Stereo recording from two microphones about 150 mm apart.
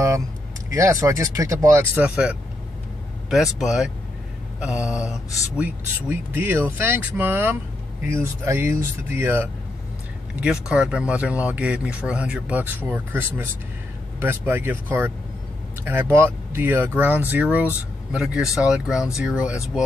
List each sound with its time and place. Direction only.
0.7 s speech: 20° right (ahead or behind)